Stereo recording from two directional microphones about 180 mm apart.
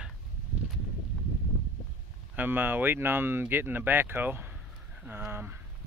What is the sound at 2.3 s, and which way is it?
Speech, 10° right (ahead or behind).